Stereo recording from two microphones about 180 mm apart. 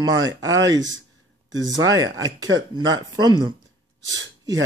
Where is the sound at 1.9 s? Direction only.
20° right (ahead or behind).